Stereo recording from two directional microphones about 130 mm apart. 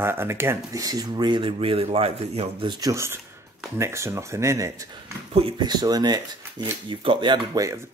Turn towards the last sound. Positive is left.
turn(degrees=-30)  # may be behind; listen again after turning